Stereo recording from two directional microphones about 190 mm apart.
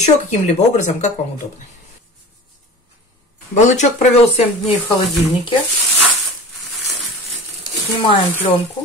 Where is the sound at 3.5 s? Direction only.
40° left (ahead or behind).